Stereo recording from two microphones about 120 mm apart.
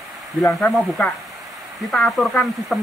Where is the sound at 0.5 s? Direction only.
10° left (ahead or behind).